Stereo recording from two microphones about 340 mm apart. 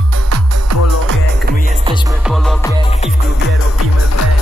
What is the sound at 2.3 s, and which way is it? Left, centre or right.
Music, centre.